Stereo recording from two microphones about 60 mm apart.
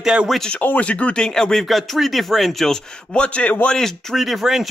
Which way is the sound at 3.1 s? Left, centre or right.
Centre.